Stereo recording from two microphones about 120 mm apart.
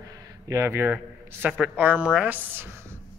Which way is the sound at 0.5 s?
20° right (ahead or behind).